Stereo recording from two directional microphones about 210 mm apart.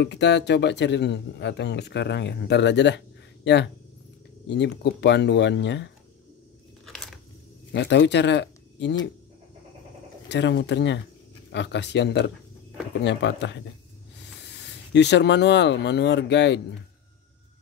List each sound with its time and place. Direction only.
0.0 s speech: 55° left (ahead or behind)
6.9 s a sound: centre (ahead or behind)
7.7 s speech: 55° left (ahead or behind)
10.2 s speech: 55° left (ahead or behind)